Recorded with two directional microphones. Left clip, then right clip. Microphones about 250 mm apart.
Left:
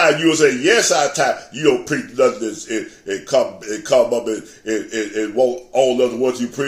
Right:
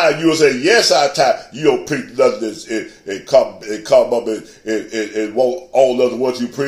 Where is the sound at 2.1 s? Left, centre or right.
Left.